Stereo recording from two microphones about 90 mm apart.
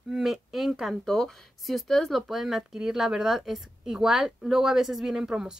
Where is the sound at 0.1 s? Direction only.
Centre (ahead or behind).